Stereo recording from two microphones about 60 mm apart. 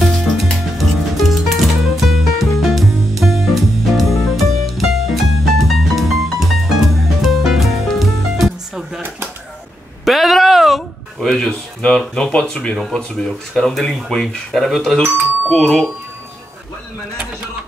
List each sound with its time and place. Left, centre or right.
0.0 s music: centre
10.0 s a sound: centre
12.1 s speech: centre
13.5 s speech: centre